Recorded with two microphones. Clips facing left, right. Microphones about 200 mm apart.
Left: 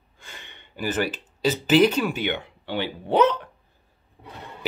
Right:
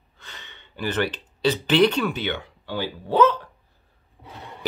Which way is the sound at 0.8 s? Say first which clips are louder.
Even; 5° left (ahead or behind).